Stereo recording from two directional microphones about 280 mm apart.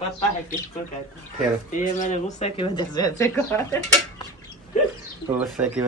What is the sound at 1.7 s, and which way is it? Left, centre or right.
Speech, left.